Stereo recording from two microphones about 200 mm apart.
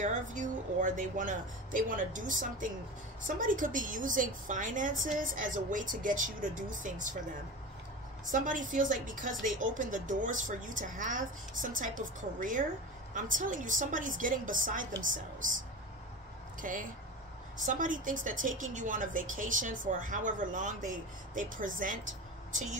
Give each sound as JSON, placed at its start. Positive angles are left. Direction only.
{"t": 0.0, "sound": "a woman's voice", "side_deg": -40}
{"t": 8.3, "sound": "a woman's voice", "side_deg": -40}
{"t": 16.6, "sound": "a woman's voice", "side_deg": -40}